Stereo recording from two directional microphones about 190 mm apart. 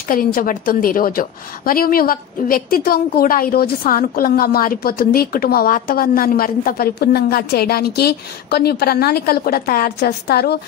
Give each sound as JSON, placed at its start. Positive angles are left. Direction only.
{"t": 0.1, "sound": "a woman's voice", "side_deg": 50}